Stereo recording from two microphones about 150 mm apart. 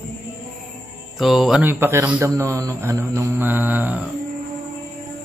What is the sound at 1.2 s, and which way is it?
Mantra, centre (ahead or behind).